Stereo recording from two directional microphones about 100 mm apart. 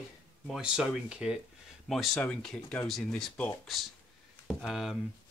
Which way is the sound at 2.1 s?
10° left (ahead or behind).